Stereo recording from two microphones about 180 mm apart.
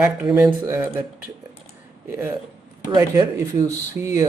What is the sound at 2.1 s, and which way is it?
Speech, 15° right (ahead or behind).